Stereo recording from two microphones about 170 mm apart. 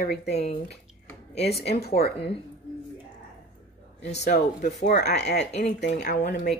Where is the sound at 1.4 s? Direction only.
70° left (ahead or behind).